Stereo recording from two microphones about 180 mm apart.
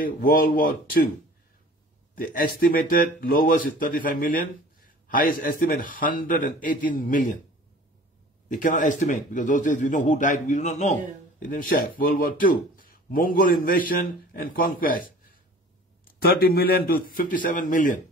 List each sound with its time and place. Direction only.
0.0 s a man's voice: 50° left (ahead or behind)
2.1 s a man's voice: 50° left (ahead or behind)
8.5 s a man's voice: 45° left (ahead or behind)
16.2 s a man's voice: 60° left (ahead or behind)